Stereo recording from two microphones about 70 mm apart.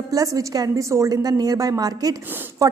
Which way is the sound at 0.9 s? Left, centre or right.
Right.